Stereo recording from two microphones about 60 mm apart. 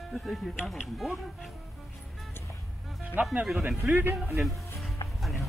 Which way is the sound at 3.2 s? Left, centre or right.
Right.